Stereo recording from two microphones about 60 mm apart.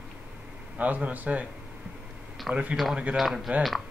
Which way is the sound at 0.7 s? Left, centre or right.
Right.